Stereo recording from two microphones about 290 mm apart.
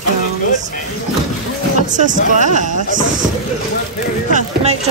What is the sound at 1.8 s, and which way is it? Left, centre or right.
Speech, right.